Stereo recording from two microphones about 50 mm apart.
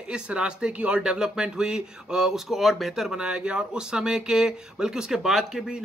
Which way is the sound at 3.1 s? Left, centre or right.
Centre.